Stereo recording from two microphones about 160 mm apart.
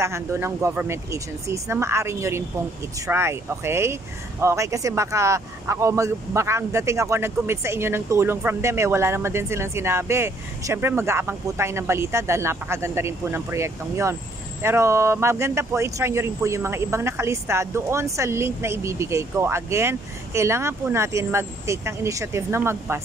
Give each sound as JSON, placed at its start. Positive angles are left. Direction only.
{"t": 0.0, "sound": "speech", "side_deg": -15}